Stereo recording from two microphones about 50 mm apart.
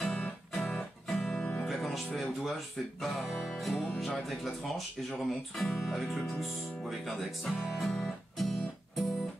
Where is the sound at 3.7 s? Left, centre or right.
Centre.